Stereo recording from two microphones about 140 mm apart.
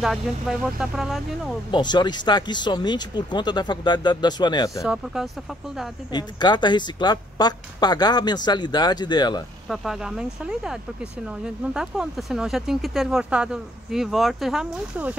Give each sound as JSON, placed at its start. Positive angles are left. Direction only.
{"t": 0.0, "sound": "speech", "side_deg": 0}
{"t": 1.7, "sound": "a woman's voice", "side_deg": 30}
{"t": 4.8, "sound": "speech", "side_deg": -5}
{"t": 6.1, "sound": "a woman's voice", "side_deg": 30}
{"t": 9.7, "sound": "speech", "side_deg": -5}